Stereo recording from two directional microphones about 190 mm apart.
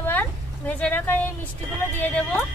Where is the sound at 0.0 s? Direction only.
10° left (ahead or behind).